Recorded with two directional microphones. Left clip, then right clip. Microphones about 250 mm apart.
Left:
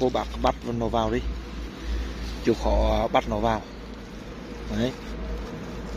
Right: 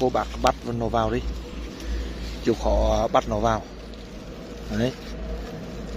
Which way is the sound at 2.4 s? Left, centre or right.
Centre.